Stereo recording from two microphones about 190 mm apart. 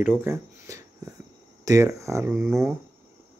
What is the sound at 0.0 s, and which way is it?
Speech, 10° right (ahead or behind).